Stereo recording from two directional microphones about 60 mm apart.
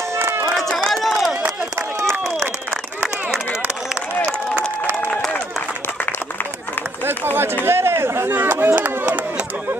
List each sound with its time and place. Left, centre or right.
0.1 s run: right
0.8 s crowd: centre
1.3 s a sound: right
7.1 s run: right
7.6 s chop: right
8.7 s a sound: right